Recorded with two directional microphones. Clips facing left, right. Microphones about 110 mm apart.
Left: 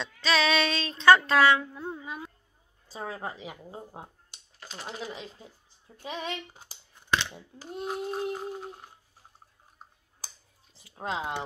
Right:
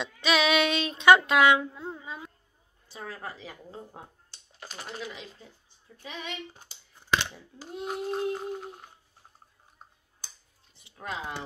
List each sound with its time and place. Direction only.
0.0 s speech: 15° right (ahead or behind)
1.7 s a woman's voice: centre (ahead or behind)
2.0 s a sound: 10° left (ahead or behind)
2.9 s speech: 25° left (ahead or behind)
5.9 s speech: 40° left (ahead or behind)
7.8 s a sound: centre (ahead or behind)
11.0 s speech: 25° left (ahead or behind)